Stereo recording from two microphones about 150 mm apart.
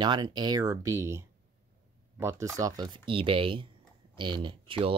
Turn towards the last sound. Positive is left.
turn(degrees=-35)  # may be behind; listen again after turning